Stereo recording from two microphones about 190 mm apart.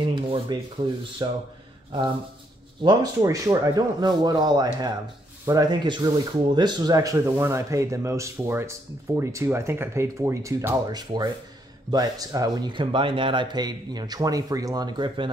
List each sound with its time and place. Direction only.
0.0 s sanding: 25° right (ahead or behind)
1.2 s speech: 25° right (ahead or behind)